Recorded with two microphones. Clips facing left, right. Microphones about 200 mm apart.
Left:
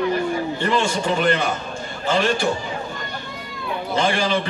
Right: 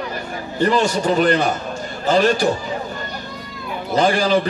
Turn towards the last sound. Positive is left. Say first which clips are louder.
# right 4 dB
turn(degrees=-40)  # may be behind; listen again after turning